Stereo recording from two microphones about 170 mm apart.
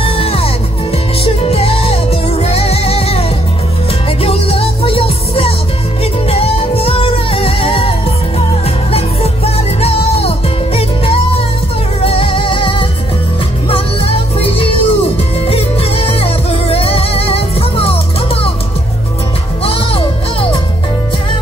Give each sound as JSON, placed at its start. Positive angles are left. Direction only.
{"t": 0.0, "sound": "music", "side_deg": 35}
{"t": 8.9, "sound": "music", "side_deg": 35}
{"t": 19.6, "sound": "music", "side_deg": 35}